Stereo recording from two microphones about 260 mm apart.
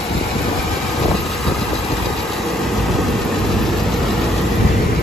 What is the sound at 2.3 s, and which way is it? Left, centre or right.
Vehicle, centre.